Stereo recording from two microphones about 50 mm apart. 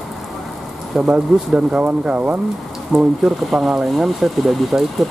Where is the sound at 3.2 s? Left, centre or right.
Centre.